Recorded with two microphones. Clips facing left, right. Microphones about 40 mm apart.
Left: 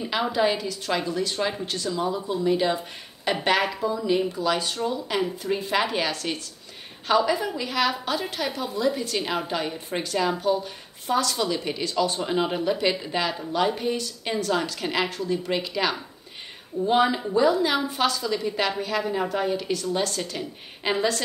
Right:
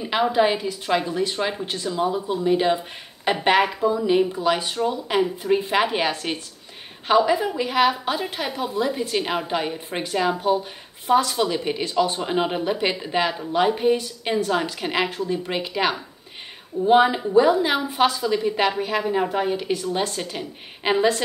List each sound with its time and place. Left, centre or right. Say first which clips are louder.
0.1 s a woman's voice: right 4 dB; right